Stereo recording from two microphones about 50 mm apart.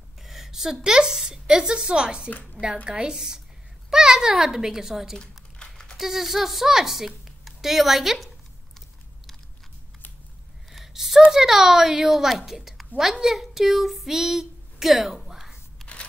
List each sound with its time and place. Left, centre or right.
0.2 s a woman's voice: centre
2.2 s a woman's voice: left
2.6 s a woman's voice: centre
5.1 s crumpling: centre
5.9 s speech: centre
10.7 s a sound: centre
11.3 s a woman's voice: centre
13.2 s child singing: centre
15.8 s a sound: centre